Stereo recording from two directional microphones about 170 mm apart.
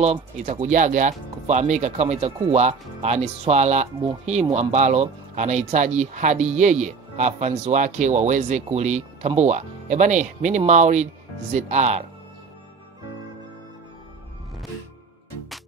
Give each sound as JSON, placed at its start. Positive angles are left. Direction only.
{"t": 0.0, "sound": "speech", "side_deg": -40}